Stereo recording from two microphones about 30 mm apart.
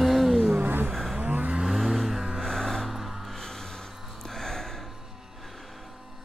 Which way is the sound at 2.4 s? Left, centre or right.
Centre.